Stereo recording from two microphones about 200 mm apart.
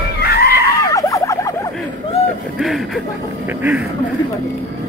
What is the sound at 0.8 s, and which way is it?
Turkey, 15° left (ahead or behind).